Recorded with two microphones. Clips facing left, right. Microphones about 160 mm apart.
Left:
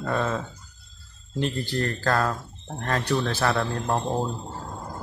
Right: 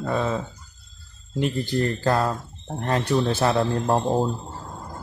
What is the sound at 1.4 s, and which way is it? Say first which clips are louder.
Speech: right 3 dB; 15° right (ahead or behind).